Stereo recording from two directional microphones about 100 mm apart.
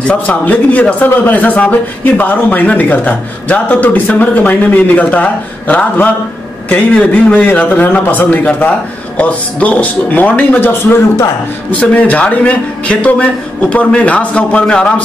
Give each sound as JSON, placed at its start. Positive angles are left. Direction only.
{"t": 0.0, "sound": "a man's voice", "side_deg": 15}
{"t": 10.7, "sound": "a man's voice", "side_deg": 25}
{"t": 11.7, "sound": "a man's voice", "side_deg": 15}